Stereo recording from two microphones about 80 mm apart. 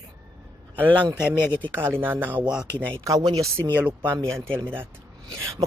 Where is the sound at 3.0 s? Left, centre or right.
Right.